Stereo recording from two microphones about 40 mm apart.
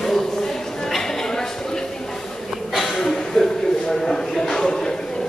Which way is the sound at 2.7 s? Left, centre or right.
Centre.